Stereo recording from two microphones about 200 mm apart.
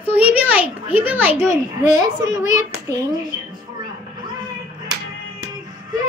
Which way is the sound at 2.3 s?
35° left (ahead or behind).